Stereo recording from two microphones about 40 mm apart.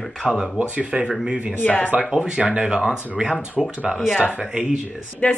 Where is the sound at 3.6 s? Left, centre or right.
Centre.